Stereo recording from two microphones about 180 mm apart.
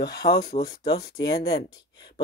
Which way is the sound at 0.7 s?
60° left (ahead or behind).